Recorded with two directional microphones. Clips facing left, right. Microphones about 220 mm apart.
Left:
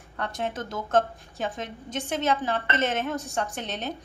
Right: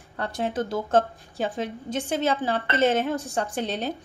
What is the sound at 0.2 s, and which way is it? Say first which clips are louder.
A woman's voice: right 4 dB; 30° right (ahead or behind).